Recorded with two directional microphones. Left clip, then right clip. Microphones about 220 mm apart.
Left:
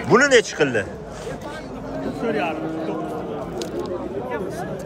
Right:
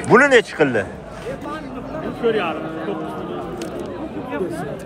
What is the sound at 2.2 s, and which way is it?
Speech, 35° left (ahead or behind).